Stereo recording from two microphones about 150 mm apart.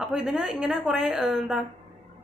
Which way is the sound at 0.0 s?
Centre (ahead or behind).